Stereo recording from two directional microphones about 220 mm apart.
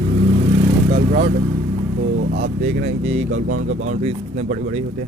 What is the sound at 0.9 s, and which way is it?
Speech, 35° right (ahead or behind).